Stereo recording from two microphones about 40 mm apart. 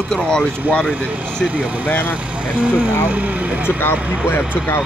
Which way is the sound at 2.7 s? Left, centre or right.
Right.